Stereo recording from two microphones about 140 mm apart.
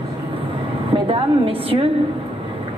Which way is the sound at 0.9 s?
40° right (ahead or behind).